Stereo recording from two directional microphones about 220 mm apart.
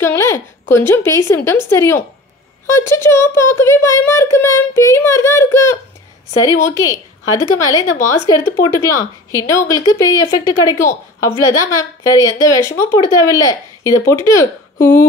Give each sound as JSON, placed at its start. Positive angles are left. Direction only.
{"t": 0.0, "sound": "speech", "side_deg": 10}
{"t": 6.9, "sound": "speech", "side_deg": 15}